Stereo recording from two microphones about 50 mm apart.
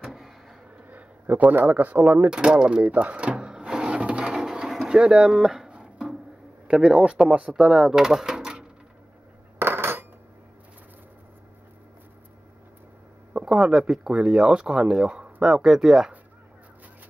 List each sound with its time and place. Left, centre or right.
1.3 s speech: right
1.7 s speech: right
2.3 s a sound: centre
6.7 s speech: centre
7.5 s speech: centre
7.9 s drawer open or close: centre
9.6 s coin: right
13.5 s speech: centre